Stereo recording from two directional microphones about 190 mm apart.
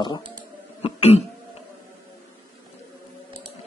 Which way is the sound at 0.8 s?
35° left (ahead or behind).